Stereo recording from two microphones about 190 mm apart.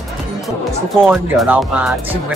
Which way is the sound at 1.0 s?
5° right (ahead or behind).